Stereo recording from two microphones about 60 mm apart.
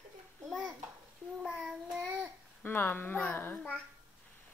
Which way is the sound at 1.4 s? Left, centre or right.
Centre.